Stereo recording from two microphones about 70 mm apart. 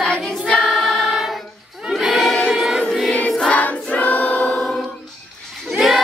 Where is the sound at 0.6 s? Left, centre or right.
Centre.